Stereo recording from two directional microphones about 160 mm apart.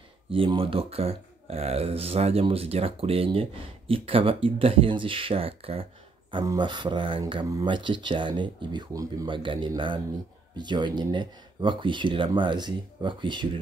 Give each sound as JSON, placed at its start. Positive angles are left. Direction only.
{"t": 0.3, "sound": "speech", "side_deg": -35}
{"t": 6.3, "sound": "speech", "side_deg": -25}